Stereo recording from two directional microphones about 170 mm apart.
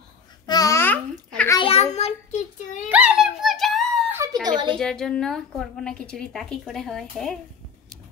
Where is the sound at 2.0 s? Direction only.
40° left (ahead or behind).